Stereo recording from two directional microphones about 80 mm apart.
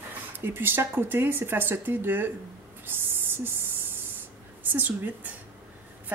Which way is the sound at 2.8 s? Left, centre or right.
Right.